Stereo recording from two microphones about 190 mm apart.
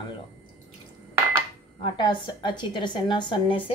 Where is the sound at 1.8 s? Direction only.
25° left (ahead or behind).